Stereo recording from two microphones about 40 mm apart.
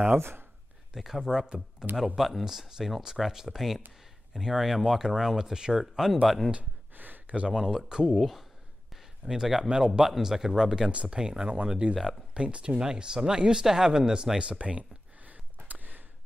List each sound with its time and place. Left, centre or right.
0.2 s speech: right
0.9 s speech: centre
2.1 s speech: centre
6.9 s a sound: right
7.3 s speech: right
8.1 s speech: centre
9.2 s speech: centre
10.9 s speech: right
11.4 s speech: right
11.9 s speech: centre
12.4 s speech: right
14.6 s a sound: right
15.7 s a sound: right